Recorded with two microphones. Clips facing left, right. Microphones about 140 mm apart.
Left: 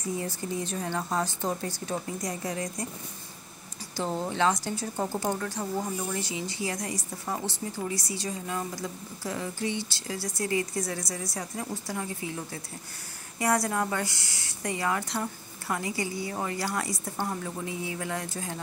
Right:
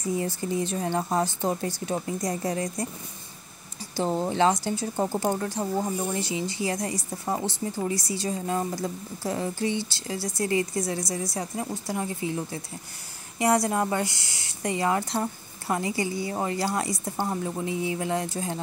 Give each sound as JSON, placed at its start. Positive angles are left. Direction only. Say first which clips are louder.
{"t": 0.2, "sound": "speech", "louder": "right 5 dB", "side_deg": -25}
{"t": 3.9, "sound": "speech", "louder": "right 4 dB", "side_deg": -30}